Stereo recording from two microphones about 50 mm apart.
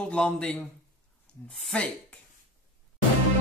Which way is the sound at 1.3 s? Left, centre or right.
Left.